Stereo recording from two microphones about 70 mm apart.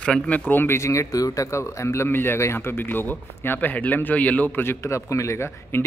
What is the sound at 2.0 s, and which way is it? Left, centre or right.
Speech, left.